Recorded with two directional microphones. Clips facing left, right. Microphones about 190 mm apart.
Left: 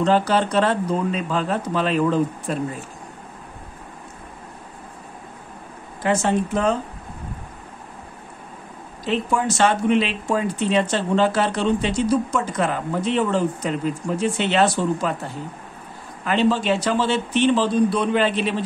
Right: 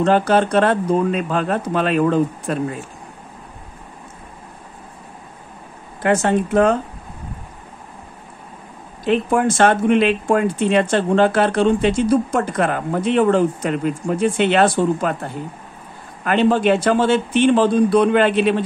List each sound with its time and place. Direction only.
0.0 s speech: 50° right (ahead or behind)
6.0 s speech: 60° right (ahead or behind)
9.0 s speech: 55° right (ahead or behind)
16.3 s speech: 55° right (ahead or behind)